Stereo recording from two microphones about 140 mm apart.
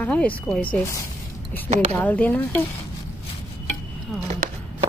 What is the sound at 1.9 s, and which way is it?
Speech, 10° left (ahead or behind).